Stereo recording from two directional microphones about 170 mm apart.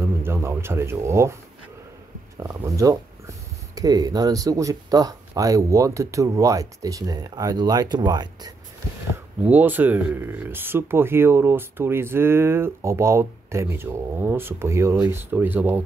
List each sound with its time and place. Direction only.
0.0 s a sound: 15° right (ahead or behind)
2.4 s speech: 20° right (ahead or behind)
9.4 s speech: 10° right (ahead or behind)